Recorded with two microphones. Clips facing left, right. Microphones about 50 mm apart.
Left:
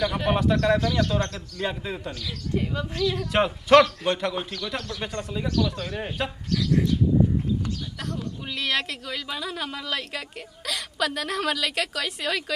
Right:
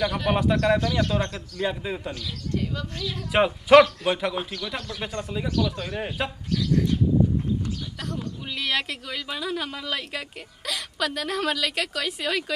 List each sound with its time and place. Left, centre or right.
0.3 s speech: centre
2.5 s speech: centre
3.0 s speech: centre
3.3 s speech: centre
8.0 s speech: centre